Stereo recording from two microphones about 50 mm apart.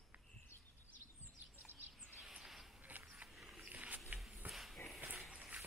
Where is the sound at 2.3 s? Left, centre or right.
Centre.